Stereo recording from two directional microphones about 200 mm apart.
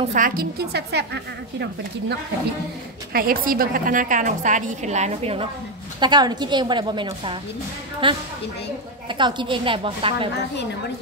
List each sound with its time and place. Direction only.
0.1 s a woman's voice: 45° right (ahead or behind)
3.1 s a woman's voice: 45° right (ahead or behind); by 8.2 s 25° right (ahead or behind)
9.2 s a woman's voice: 25° right (ahead or behind)